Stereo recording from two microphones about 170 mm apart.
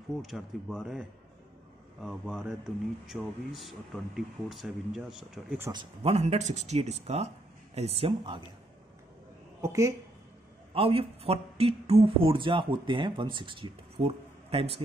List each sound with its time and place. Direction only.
0.2 s speech: centre (ahead or behind)
5.7 s speech: 30° right (ahead or behind)
9.6 s speech: 20° right (ahead or behind)
10.7 s speech: 35° right (ahead or behind)